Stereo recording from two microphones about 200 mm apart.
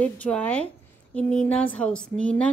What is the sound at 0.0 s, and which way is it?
A woman's voice, 5° left (ahead or behind).